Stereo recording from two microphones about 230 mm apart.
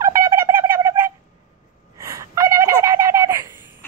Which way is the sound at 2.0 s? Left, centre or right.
Centre.